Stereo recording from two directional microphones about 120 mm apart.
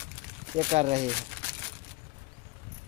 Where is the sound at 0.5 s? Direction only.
70° right (ahead or behind).